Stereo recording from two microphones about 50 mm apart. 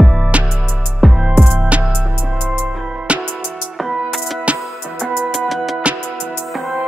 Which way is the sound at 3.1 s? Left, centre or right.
Right.